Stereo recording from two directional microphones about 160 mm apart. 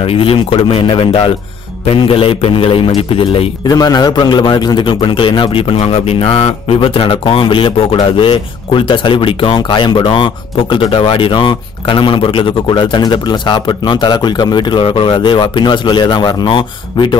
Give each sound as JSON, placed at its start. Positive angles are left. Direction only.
{"t": 0.0, "sound": "a man's voice", "side_deg": 35}